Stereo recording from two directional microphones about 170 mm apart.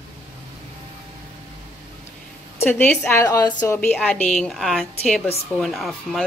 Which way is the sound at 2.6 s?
10° left (ahead or behind).